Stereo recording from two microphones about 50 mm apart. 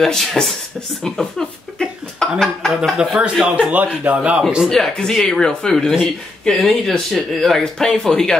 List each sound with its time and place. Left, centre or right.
0.0 s speech: centre
1.8 s a sound: centre
2.8 s speech: centre
3.4 s a man's voice: right
4.4 s speech: centre
4.6 s speech: centre